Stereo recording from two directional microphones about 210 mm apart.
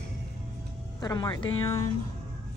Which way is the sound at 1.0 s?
20° left (ahead or behind).